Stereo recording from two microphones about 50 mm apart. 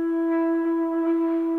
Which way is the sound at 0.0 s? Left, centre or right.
Centre.